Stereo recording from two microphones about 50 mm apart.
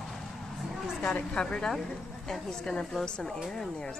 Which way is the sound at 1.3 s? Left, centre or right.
Centre.